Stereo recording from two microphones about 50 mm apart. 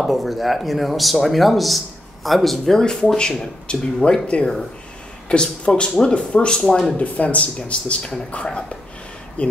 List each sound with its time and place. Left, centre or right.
0.0 s speech: centre
7.0 s speech: left